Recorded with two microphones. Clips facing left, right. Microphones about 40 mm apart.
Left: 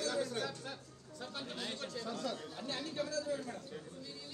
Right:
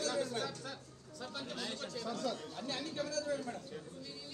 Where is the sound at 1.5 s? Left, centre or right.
Left.